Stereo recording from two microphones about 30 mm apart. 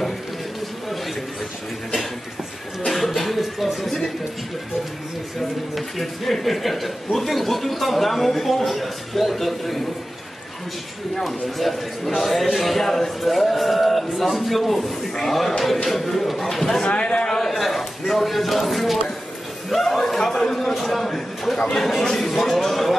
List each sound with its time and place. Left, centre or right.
2.9 s music: centre
5.8 s speech: centre
11.2 s speech: centre
16.8 s a sound: left
17.3 s a sound: centre
19.7 s speech: centre